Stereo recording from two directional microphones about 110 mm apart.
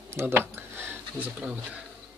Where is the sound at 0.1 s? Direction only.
25° right (ahead or behind).